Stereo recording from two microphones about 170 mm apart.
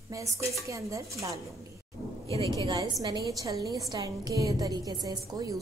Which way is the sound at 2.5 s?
25° right (ahead or behind).